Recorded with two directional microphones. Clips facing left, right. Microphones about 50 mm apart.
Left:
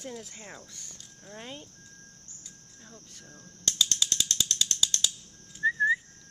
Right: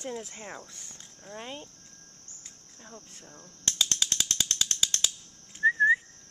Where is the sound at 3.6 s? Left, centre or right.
Right.